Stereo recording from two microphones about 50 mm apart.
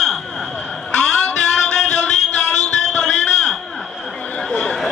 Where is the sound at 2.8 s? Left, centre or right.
Centre.